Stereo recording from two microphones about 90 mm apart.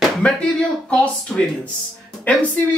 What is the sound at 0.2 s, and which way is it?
Speech, 10° left (ahead or behind).